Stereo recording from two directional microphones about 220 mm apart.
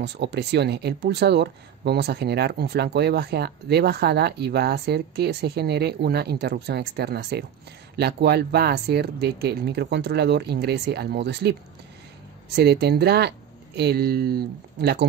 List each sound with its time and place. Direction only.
0.0 s speech: 50° right (ahead or behind)